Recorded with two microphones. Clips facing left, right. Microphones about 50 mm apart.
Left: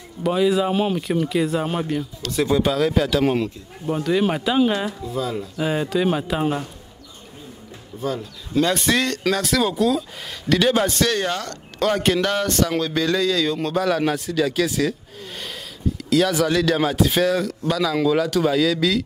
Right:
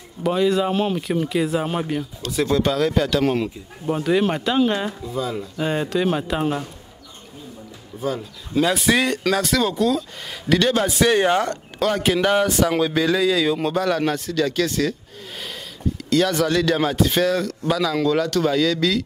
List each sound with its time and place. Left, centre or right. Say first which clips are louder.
0.2 s speech: even; centre
2.4 s speech: even; centre
3.4 s speech: right 1 dB; centre
8.0 s speech: right 1 dB; centre
10.9 s speech: right 4 dB; centre
11.8 s speech: left 1 dB; centre
12.2 s speech: right 3 dB; centre